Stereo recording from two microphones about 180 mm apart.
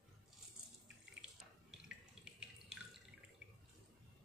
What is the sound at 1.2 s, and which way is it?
Water tap, 5° right (ahead or behind).